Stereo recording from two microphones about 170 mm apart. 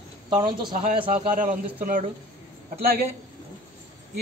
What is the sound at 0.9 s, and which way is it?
Speech, 30° right (ahead or behind).